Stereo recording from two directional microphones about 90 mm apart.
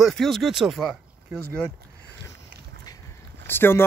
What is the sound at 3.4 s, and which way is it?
Speech, 25° left (ahead or behind).